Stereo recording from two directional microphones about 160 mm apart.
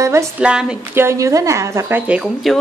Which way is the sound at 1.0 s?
20° right (ahead or behind).